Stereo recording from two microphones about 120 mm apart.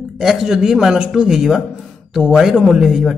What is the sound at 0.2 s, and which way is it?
Speech, 5° right (ahead or behind).